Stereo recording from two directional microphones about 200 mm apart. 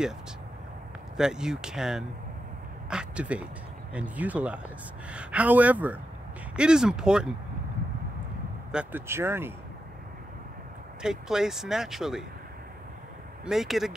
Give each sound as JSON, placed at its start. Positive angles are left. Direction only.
{"t": 1.1, "sound": "speech", "side_deg": -5}
{"t": 8.7, "sound": "speech", "side_deg": -10}
{"t": 11.0, "sound": "speech", "side_deg": -5}
{"t": 13.5, "sound": "speech", "side_deg": 0}